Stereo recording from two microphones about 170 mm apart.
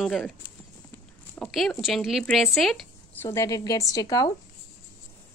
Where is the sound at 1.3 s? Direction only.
5° left (ahead or behind).